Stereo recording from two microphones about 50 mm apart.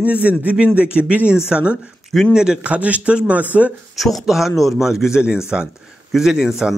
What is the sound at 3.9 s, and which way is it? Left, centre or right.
Speech, centre.